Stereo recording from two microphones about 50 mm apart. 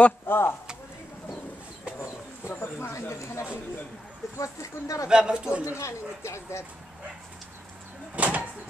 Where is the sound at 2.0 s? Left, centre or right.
Left.